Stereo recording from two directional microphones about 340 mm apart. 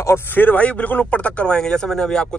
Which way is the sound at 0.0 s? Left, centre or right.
Centre.